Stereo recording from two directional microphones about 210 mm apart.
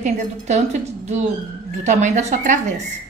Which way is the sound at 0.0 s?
35° right (ahead or behind).